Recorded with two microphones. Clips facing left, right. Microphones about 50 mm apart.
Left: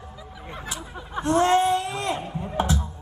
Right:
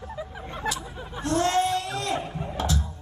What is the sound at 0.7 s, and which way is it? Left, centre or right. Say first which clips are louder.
Speech: right 5 dB; left.